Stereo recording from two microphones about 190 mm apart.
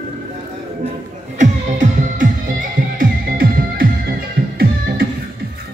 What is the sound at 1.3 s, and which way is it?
Music, 40° right (ahead or behind).